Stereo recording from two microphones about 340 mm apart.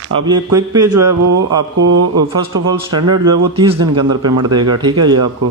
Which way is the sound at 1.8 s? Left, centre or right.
Right.